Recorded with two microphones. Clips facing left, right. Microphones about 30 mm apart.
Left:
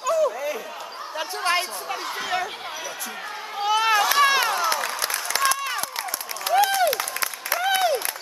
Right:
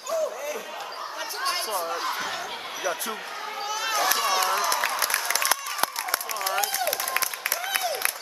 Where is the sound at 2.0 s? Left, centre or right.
Centre.